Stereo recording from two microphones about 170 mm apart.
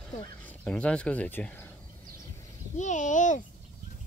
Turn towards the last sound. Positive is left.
turn(degrees=45)  # may be behind; listen again after turning